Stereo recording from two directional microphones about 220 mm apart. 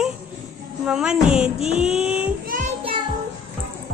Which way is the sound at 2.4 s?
40° right (ahead or behind).